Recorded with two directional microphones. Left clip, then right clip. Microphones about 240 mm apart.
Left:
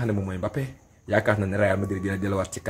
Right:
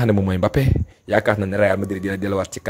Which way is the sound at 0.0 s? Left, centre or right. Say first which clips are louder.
Right 9 dB; right.